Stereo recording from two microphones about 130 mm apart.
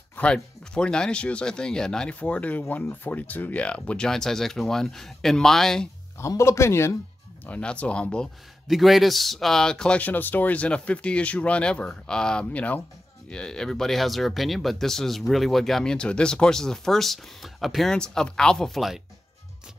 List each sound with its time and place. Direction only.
0.1 s speech: 10° left (ahead or behind)
6.1 s speech: 20° left (ahead or behind)
7.4 s speech: 10° left (ahead or behind)